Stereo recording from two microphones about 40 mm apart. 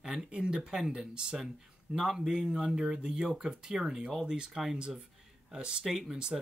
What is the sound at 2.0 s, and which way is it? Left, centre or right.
Speech, centre.